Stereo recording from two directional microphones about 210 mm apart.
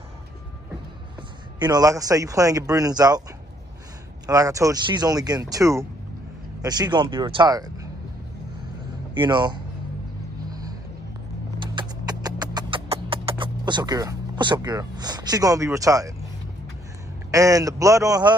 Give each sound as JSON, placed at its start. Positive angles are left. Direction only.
{"t": 1.6, "sound": "speech", "side_deg": -20}
{"t": 4.3, "sound": "speech", "side_deg": -15}
{"t": 9.1, "sound": "speech", "side_deg": -20}
{"t": 10.5, "sound": "a sound", "side_deg": -20}
{"t": 11.6, "sound": "music", "side_deg": -20}
{"t": 17.3, "sound": "speech", "side_deg": -15}